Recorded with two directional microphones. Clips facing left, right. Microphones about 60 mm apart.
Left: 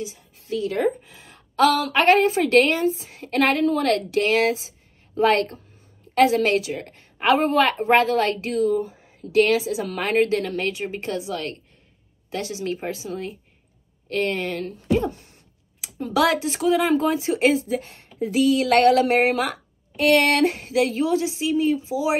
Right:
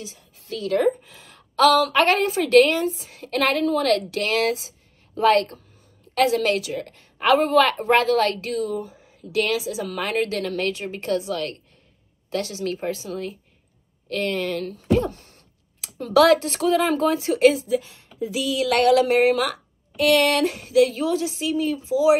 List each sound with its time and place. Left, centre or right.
0.4 s a woman's voice: left